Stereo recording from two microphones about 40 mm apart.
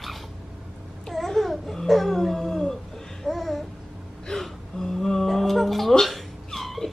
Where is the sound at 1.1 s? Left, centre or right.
Centre.